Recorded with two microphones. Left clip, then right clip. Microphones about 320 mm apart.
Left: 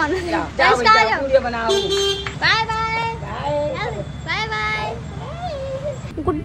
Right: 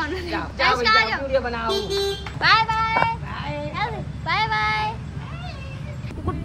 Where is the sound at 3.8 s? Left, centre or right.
Centre.